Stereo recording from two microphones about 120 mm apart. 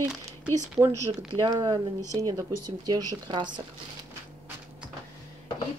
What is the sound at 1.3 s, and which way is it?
Speech, 35° right (ahead or behind).